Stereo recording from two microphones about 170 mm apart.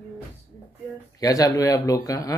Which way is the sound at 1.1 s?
20° left (ahead or behind).